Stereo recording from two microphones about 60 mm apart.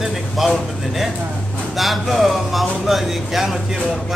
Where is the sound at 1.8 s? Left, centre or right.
Centre.